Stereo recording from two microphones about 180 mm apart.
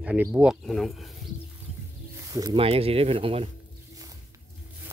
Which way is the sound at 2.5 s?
30° right (ahead or behind).